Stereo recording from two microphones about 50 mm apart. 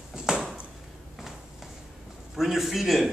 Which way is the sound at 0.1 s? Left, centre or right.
Centre.